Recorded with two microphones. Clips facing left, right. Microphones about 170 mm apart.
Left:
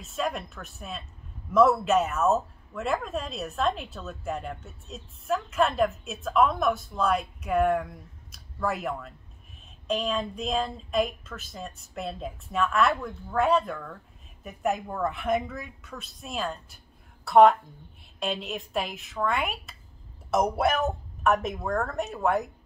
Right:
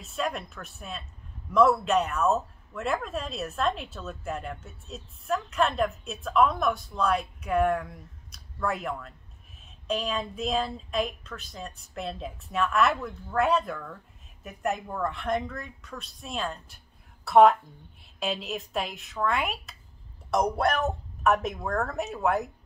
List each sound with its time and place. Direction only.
0.0 s speech: centre (ahead or behind)